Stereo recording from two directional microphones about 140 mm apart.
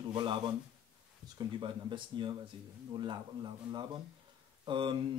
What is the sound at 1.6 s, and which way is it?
Speech, 35° right (ahead or behind).